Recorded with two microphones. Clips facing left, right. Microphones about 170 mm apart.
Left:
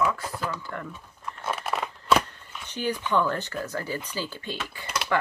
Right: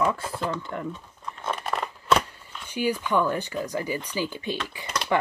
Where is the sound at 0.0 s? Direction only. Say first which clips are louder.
Right 2 dB; 30° right (ahead or behind).